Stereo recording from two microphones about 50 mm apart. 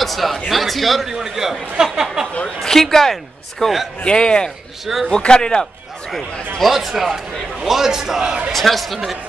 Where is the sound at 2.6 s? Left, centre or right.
Centre.